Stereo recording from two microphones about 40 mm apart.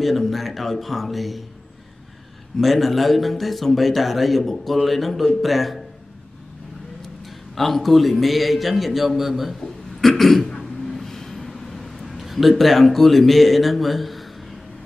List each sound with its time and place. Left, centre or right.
0.0 s a man's voice: centre
2.6 s a man's voice: centre
7.5 s a man's voice: centre
9.6 s a sound: centre